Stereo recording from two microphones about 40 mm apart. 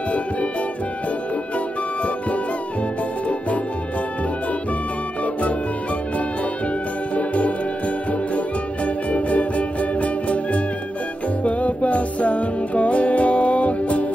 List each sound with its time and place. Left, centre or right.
7.2 s music: left